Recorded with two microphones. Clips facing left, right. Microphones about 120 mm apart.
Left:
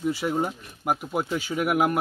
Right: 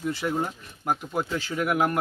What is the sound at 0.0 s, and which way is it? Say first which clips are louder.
Speech: left 2 dB; 10° left (ahead or behind).